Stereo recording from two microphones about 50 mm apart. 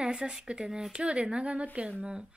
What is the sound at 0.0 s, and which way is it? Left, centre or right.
A woman's voice, centre.